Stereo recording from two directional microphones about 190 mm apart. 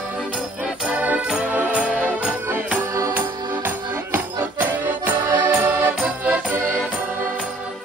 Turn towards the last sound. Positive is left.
turn(degrees=-5)  # may be behind; listen again after turning